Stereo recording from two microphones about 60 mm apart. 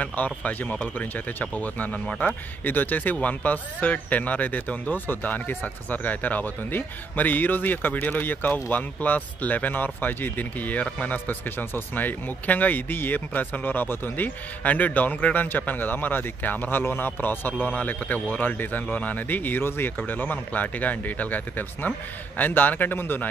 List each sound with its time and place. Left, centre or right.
0.0 s speech: left